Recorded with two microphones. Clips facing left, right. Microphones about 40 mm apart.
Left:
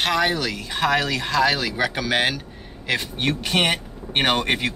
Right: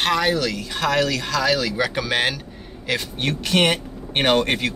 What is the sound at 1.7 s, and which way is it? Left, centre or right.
Speech, centre.